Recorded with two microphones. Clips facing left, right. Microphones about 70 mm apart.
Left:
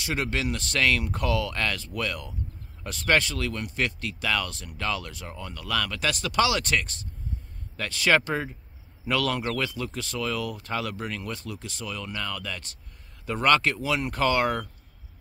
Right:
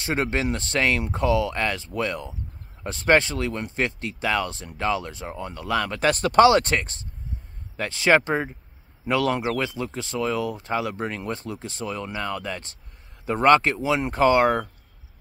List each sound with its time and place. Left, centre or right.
0.0 s speech: right